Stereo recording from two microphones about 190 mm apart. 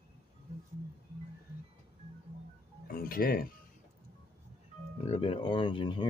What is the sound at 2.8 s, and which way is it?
Music, 50° left (ahead or behind).